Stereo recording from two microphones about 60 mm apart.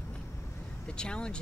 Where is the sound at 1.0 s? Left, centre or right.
Centre.